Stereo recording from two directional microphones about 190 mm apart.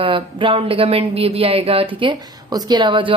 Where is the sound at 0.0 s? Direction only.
25° right (ahead or behind).